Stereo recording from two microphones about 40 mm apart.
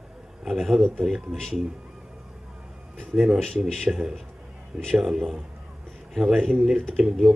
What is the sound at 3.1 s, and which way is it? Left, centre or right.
Speech, centre.